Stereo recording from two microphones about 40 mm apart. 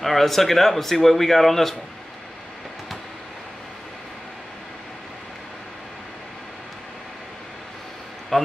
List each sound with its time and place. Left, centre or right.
0.0 s speech: centre
8.3 s a man's voice: centre